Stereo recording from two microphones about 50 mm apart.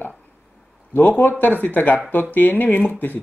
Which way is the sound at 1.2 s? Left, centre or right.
Left.